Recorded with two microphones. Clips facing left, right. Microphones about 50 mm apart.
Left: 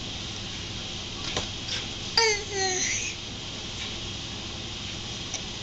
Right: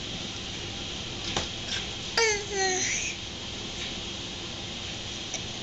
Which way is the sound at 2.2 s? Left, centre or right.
Centre.